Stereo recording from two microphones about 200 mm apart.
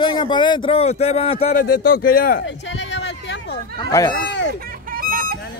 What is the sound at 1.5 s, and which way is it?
Speech, 45° left (ahead or behind).